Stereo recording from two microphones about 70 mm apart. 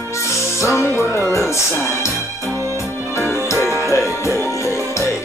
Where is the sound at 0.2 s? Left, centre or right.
Left.